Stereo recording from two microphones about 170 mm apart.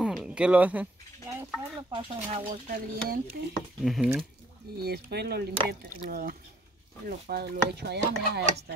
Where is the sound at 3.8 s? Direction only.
Centre (ahead or behind).